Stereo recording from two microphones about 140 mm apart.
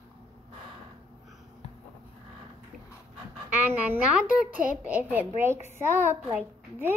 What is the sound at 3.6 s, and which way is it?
A woman's voice, 10° right (ahead or behind).